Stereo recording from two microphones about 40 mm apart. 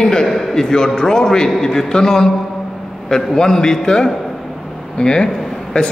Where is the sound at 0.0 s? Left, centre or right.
Centre.